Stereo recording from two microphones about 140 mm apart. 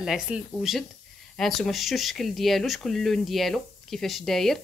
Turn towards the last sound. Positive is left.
turn(degrees=0)  # may be behind; listen again after turning